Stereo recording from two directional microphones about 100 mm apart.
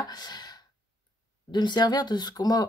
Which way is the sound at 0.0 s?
45° left (ahead or behind).